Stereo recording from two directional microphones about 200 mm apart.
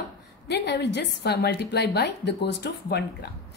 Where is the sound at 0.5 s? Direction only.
55° left (ahead or behind).